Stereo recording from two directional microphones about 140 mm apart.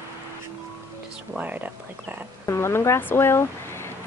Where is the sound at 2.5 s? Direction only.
20° left (ahead or behind).